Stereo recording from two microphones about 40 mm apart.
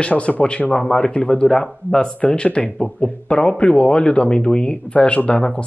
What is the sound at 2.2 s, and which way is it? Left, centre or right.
Speech, left.